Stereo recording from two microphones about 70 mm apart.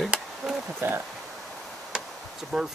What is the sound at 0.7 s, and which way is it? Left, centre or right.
Speech, right.